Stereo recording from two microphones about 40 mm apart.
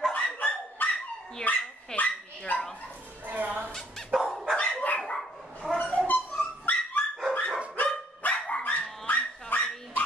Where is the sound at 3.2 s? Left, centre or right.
Right.